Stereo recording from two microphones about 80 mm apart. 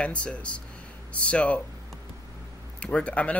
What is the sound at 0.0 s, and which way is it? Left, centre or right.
Speech, centre.